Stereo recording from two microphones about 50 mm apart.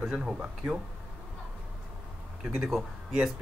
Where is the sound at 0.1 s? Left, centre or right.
Centre.